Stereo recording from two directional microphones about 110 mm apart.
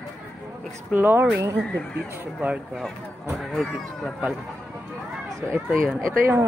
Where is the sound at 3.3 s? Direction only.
Centre (ahead or behind).